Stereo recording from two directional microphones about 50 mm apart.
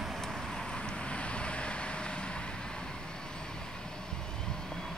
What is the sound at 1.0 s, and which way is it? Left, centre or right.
Vehicle, left.